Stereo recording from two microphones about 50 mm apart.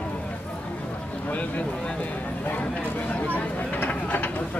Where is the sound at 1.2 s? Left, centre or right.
Left.